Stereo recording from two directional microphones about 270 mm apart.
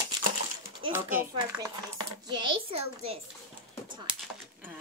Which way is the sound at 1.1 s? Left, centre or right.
Centre.